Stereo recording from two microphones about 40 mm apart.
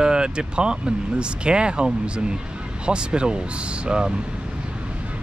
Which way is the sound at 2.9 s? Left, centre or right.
Right.